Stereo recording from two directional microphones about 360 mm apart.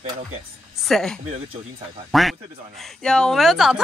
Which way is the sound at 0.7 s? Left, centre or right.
Centre.